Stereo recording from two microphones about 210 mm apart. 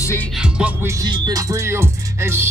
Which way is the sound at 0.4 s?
5° right (ahead or behind).